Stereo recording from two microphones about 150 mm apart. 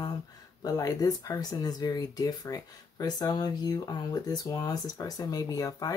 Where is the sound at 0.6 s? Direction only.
25° left (ahead or behind).